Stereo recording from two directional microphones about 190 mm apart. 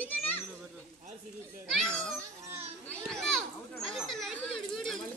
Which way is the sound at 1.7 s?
5° left (ahead or behind).